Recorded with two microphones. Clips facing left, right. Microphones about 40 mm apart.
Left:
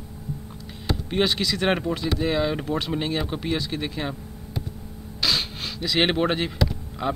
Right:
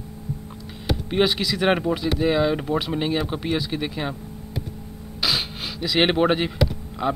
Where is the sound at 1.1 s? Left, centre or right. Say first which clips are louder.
Right 2 dB; centre.